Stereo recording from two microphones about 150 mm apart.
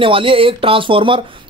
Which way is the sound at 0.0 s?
35° right (ahead or behind).